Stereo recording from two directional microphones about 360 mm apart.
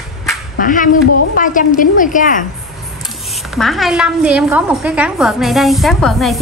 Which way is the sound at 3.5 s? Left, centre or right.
Centre.